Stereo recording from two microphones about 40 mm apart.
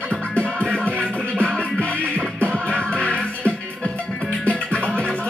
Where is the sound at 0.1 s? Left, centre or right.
Left.